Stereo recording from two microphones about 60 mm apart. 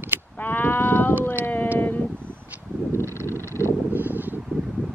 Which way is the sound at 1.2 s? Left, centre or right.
Left.